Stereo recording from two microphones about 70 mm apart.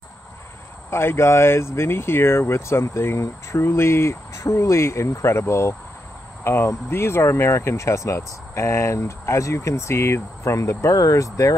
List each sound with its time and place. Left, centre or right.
0.8 s speech: left